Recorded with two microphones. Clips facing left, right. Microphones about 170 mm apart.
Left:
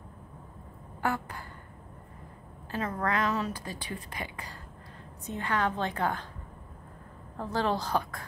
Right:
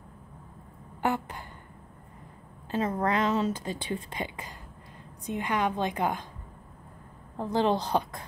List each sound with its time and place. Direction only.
1.0 s a woman's voice: 20° right (ahead or behind)
2.7 s a woman's voice: 20° right (ahead or behind)
7.3 s a woman's voice: 20° right (ahead or behind)